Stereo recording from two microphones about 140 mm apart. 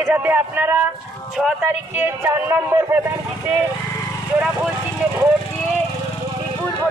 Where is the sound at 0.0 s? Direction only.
10° right (ahead or behind).